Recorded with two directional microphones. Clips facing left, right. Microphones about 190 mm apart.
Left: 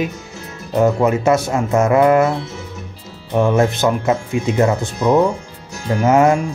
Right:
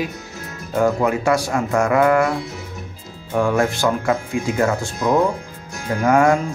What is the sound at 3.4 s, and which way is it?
Speech, 20° left (ahead or behind).